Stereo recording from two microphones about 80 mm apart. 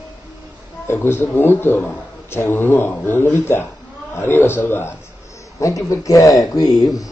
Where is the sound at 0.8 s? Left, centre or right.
Left.